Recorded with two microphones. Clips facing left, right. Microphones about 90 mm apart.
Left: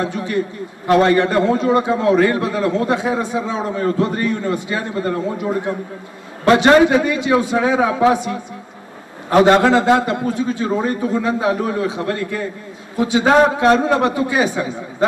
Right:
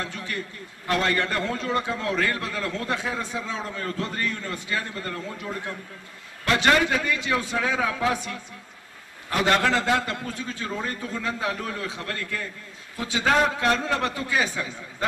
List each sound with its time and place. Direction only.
0.0 s a man's voice: 20° left (ahead or behind)